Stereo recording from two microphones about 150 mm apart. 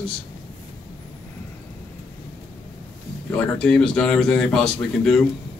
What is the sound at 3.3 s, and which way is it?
Speech, 5° left (ahead or behind).